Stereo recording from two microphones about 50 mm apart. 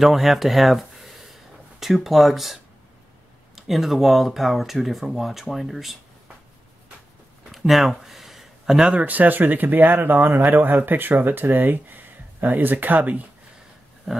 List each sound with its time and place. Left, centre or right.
0.0 s speech: centre
7.5 s a sound: centre
8.9 s speech: right
14.1 s roaring cats: centre